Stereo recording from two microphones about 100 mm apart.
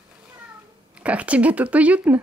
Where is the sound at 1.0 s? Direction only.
15° right (ahead or behind).